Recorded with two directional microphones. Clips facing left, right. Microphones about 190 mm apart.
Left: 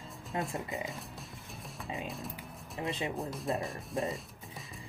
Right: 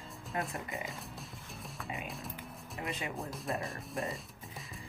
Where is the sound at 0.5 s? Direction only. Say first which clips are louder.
Left 3 dB; 20° left (ahead or behind).